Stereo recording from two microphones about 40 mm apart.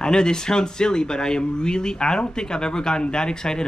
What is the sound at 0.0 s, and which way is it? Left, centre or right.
Speech, centre.